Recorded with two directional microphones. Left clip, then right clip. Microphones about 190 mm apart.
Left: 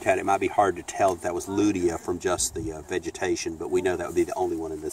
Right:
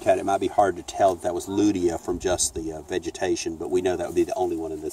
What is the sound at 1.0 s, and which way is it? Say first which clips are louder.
Speech: right 3 dB; 20° right (ahead or behind).